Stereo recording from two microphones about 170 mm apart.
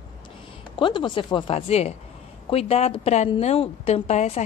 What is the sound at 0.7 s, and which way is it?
A woman's voice, 30° left (ahead or behind).